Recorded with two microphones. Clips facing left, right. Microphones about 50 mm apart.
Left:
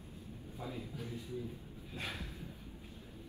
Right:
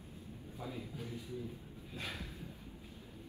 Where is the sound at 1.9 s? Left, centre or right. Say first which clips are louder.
Left 1 dB; left.